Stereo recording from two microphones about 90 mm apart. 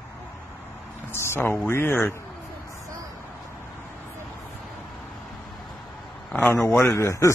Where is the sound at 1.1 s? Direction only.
30° left (ahead or behind).